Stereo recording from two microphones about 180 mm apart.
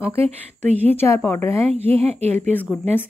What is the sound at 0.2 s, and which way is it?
Speech, 40° right (ahead or behind).